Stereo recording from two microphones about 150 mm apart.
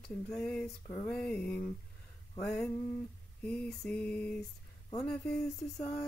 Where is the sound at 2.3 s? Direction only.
5° left (ahead or behind).